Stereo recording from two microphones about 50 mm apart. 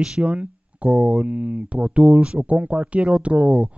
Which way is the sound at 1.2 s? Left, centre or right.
Right.